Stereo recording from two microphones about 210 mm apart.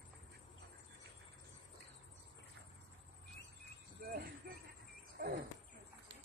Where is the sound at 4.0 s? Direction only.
45° right (ahead or behind).